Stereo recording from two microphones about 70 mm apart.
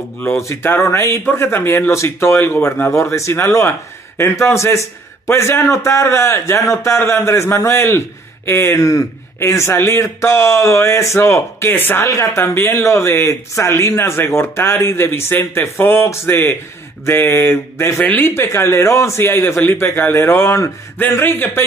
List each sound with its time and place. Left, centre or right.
0.4 s speech: left
12.0 s speech: left
18.5 s speech: left
21.0 s speech: left